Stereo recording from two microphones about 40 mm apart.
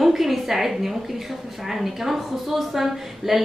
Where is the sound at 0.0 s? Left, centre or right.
Centre.